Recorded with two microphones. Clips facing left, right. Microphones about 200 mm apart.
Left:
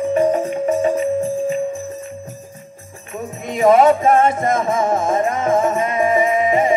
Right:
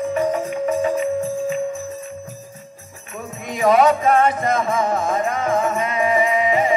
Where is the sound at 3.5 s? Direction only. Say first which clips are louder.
Left 3 dB; 25° left (ahead or behind).